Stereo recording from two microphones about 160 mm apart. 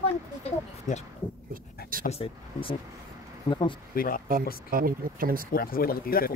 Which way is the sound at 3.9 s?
65° left (ahead or behind).